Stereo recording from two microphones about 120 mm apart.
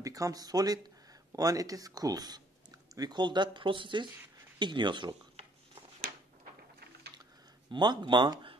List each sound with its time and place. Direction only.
0.0 s speech: 30° right (ahead or behind)
7.7 s speech: 40° right (ahead or behind)